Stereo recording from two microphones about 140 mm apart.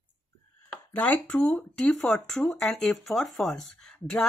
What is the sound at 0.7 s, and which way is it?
Speech, 10° left (ahead or behind).